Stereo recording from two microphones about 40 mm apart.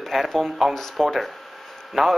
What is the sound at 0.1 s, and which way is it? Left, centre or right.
Speech, centre.